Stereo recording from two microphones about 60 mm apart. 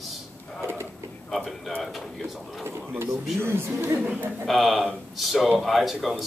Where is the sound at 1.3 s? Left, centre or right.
Centre.